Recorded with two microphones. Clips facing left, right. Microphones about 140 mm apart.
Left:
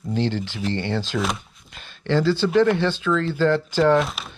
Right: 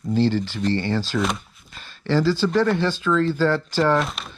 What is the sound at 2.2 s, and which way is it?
Speech, 10° left (ahead or behind).